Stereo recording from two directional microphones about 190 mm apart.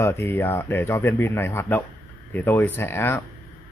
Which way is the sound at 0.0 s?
15° left (ahead or behind).